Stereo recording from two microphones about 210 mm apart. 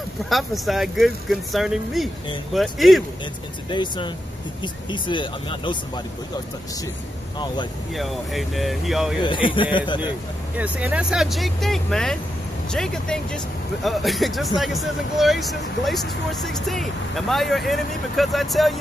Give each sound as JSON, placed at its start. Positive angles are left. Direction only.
{"t": 0.3, "sound": "speech", "side_deg": 0}
{"t": 3.7, "sound": "speech", "side_deg": 20}
{"t": 7.9, "sound": "speech", "side_deg": 0}
{"t": 9.2, "sound": "speech", "side_deg": 25}
{"t": 10.6, "sound": "speech", "side_deg": -5}